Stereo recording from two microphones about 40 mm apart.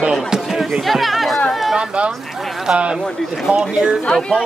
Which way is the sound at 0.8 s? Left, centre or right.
Centre.